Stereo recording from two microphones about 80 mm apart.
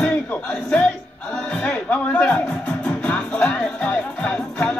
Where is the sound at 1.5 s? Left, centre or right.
Centre.